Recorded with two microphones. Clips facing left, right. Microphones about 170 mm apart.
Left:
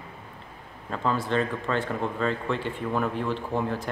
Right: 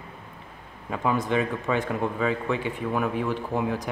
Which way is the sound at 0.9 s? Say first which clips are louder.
Right 2 dB; 10° right (ahead or behind).